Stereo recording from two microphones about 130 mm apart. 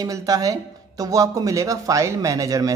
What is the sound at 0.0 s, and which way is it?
Speech, 25° right (ahead or behind).